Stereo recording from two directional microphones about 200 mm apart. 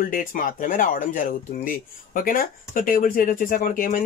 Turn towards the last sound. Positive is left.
turn(degrees=40)  # may be behind; listen again after turning